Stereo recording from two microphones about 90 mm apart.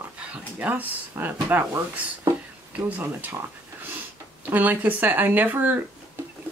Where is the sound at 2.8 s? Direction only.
20° right (ahead or behind).